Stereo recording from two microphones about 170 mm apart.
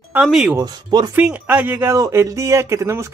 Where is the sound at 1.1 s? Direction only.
10° right (ahead or behind).